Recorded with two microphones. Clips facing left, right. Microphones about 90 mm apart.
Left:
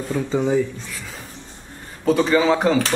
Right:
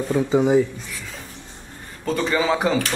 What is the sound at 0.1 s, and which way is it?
Speech, 15° right (ahead or behind).